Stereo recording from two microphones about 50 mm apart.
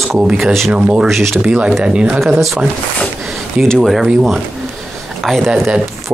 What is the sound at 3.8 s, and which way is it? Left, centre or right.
Speech, centre.